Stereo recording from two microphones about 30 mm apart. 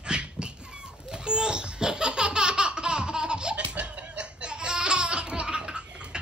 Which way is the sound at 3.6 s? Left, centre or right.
Right.